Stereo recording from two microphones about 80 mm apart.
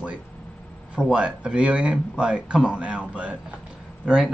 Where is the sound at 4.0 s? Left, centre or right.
Centre.